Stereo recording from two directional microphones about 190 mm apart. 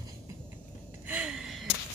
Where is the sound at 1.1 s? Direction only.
5° right (ahead or behind).